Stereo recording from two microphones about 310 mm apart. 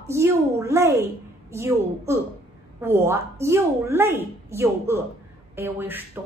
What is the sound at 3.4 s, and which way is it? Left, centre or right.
A woman's voice, centre.